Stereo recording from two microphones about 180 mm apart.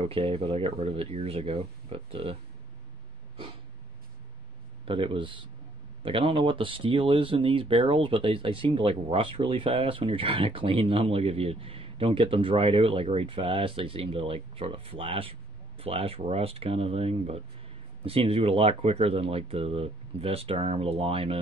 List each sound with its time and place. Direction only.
0.0 s speech: 30° right (ahead or behind)
4.8 s speech: 30° right (ahead or behind)